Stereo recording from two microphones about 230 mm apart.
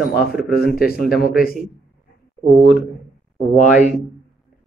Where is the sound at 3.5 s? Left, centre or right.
Left.